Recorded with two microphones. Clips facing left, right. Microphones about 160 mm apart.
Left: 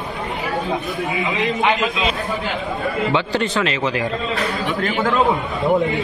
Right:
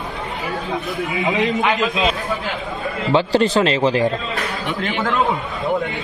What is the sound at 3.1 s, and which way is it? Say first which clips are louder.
Speech: right 9 dB; 35° right (ahead or behind).